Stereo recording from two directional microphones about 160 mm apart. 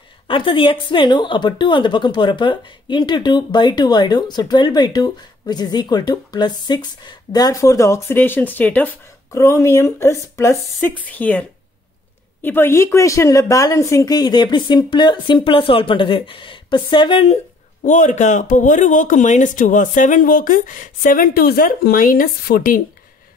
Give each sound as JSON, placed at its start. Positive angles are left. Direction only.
{"t": 0.3, "sound": "a woman's voice", "side_deg": 30}
{"t": 17.8, "sound": "speech", "side_deg": 50}